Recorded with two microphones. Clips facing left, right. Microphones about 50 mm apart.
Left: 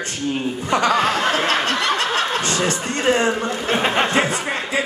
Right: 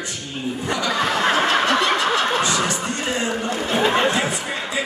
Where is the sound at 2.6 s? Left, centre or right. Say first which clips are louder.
Left 4 dB; left.